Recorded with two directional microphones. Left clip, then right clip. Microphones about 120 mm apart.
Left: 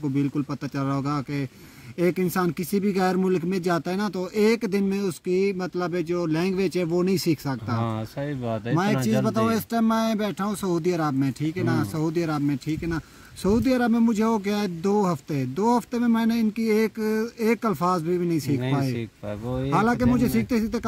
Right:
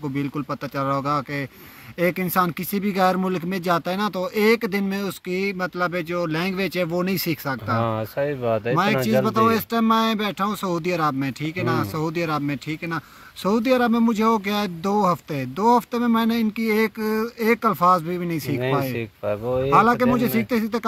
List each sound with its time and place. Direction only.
0.7 s speech: 35° left (ahead or behind)
7.7 s speech: 10° right (ahead or behind)
8.7 s speech: 50° left (ahead or behind)
18.9 s speech: 15° right (ahead or behind)
19.7 s speech: 40° left (ahead or behind)